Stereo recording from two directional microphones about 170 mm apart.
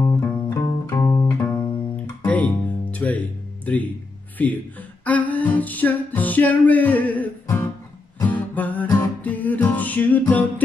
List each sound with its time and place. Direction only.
0.0 s music: 20° left (ahead or behind)
3.7 s speech: 10° left (ahead or behind)
5.0 s music: 10° left (ahead or behind)